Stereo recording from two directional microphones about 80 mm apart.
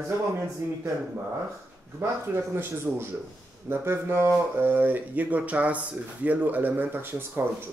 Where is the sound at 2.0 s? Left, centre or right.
Right.